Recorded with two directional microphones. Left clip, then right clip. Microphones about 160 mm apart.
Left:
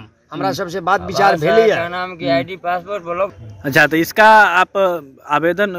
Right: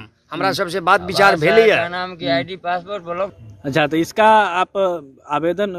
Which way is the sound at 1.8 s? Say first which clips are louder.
Left 1 dB; 90° left.